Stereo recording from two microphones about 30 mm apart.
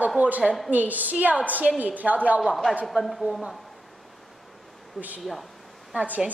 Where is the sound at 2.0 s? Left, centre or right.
Right.